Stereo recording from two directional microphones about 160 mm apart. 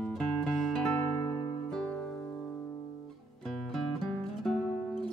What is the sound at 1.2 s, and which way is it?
Music, 25° left (ahead or behind).